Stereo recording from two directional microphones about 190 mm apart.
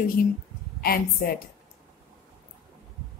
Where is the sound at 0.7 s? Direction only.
50° left (ahead or behind).